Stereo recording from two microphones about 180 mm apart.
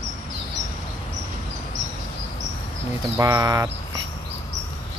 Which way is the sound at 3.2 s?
20° right (ahead or behind).